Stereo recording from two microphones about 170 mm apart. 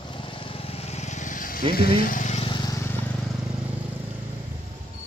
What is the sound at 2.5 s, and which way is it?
Vehicle, 25° left (ahead or behind).